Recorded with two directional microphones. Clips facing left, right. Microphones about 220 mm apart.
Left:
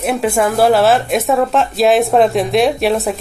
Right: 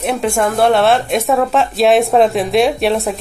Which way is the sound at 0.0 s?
Centre (ahead or behind).